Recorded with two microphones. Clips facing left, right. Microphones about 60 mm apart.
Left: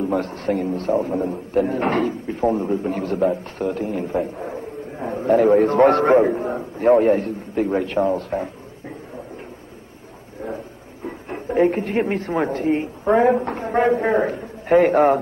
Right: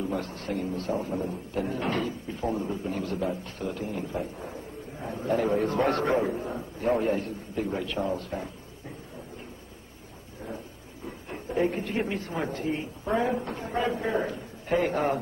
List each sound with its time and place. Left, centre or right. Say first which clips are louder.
0.0 s a man's voice: left 9 dB; left
11.1 s speech: left 9 dB; left